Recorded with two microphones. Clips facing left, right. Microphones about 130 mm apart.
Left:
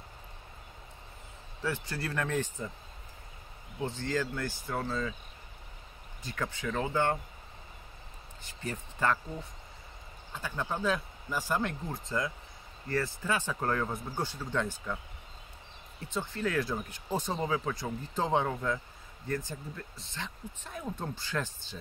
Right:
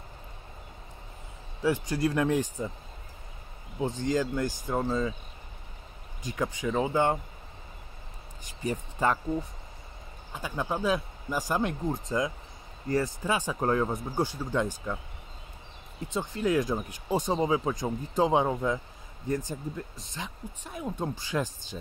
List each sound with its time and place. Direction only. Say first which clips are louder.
1.6 s speech: right 8 dB; 15° right (ahead or behind)
3.8 s speech: right 5 dB; 15° right (ahead or behind)
6.2 s speech: right 5 dB; 15° right (ahead or behind)
8.5 s speech: right 7 dB; 15° right (ahead or behind)
10.3 s speech: right 3 dB; 15° right (ahead or behind)
16.1 s speech: right 5 dB; 15° right (ahead or behind)